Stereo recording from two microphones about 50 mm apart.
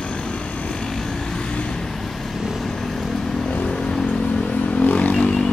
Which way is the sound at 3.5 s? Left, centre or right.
Centre.